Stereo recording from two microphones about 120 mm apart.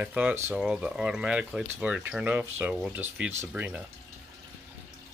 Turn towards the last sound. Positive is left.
turn(degrees=-15)  # may be behind; listen again after turning